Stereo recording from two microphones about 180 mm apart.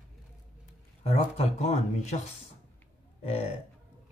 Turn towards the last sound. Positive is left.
turn(degrees=35)  # may be behind; listen again after turning